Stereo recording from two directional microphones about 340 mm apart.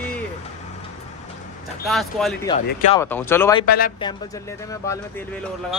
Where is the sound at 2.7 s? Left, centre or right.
Left.